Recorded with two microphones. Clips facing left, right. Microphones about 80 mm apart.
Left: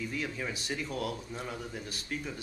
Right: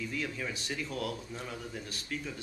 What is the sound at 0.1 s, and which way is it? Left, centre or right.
A woman's voice, centre.